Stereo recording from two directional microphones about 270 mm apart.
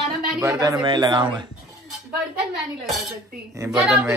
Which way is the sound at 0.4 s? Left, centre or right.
Centre.